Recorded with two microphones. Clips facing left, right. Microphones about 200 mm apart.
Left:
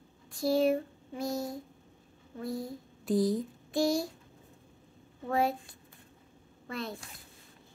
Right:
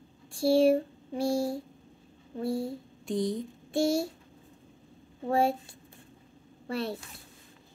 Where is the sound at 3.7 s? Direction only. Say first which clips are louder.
Right 2 dB; 25° right (ahead or behind).